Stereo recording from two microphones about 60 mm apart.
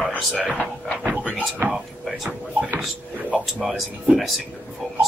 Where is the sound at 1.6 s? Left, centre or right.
Right.